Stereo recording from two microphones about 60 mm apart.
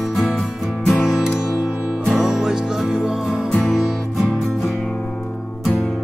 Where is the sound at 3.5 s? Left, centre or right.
Centre.